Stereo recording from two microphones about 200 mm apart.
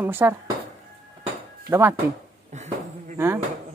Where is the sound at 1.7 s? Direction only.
10° right (ahead or behind).